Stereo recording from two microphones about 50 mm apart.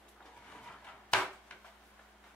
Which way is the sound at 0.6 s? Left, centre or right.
Centre.